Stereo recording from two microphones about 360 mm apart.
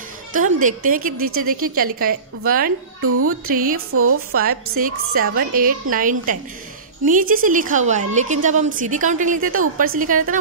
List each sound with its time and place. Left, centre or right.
0.3 s a woman's voice: right
3.0 s speech: right
3.4 s a woman's voice: right
3.7 s speech: right
4.4 s a woman's voice: right